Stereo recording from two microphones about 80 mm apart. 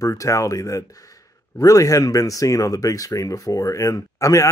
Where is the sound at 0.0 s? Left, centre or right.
Left.